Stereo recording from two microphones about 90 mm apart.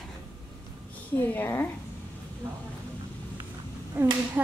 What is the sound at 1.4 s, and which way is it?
Speech, 20° left (ahead or behind).